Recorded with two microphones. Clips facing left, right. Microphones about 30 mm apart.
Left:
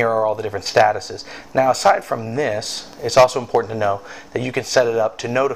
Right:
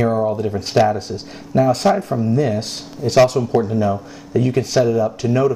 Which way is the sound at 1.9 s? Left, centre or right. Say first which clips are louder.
Right 2 dB; left.